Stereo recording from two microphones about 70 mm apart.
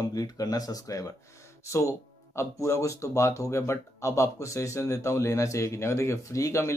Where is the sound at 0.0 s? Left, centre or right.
Left.